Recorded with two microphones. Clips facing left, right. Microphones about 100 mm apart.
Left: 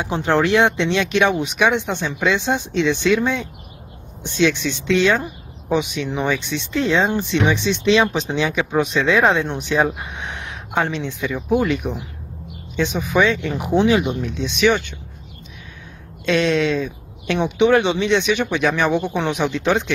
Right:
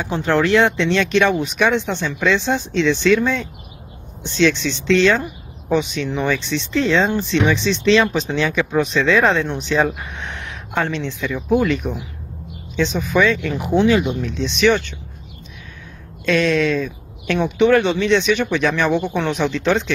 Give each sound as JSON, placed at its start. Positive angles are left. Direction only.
{"t": 0.0, "sound": "speech", "side_deg": 15}
{"t": 16.3, "sound": "speech", "side_deg": 20}